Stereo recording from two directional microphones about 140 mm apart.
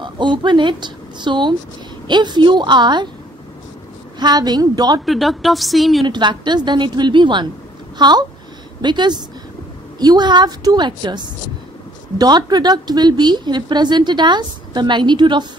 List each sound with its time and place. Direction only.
0.0 s speech: 35° right (ahead or behind)
4.2 s a woman's voice: 30° right (ahead or behind)
5.0 s a woman's voice: centre (ahead or behind)
6.0 s speech: 35° right (ahead or behind)